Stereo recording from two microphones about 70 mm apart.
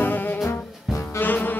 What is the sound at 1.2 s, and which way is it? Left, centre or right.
Music, left.